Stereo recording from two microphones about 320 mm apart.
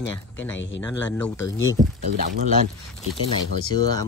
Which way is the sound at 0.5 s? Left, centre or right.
Left.